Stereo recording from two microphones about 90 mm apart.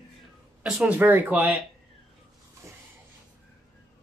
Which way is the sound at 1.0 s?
20° right (ahead or behind).